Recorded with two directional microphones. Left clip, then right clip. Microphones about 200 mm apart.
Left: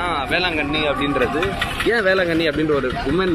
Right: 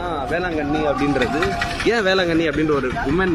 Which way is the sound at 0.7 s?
45° right (ahead or behind).